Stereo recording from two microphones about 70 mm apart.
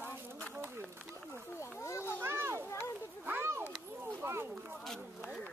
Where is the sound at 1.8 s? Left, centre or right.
Left.